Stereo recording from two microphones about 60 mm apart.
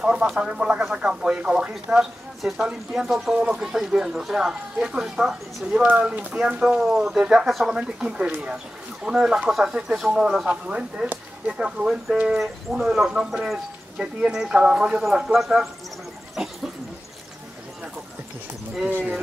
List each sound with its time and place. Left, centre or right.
0.0 s speech: centre
5.8 s speech: centre
10.4 s speech: centre